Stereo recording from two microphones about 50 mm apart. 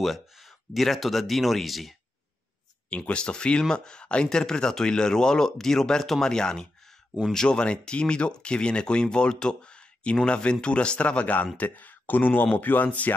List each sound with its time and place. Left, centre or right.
0.0 s speech: centre
2.9 s speech: centre
11.5 s speech: left